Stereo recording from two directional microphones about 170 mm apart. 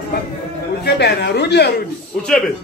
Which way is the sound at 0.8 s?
75° left (ahead or behind).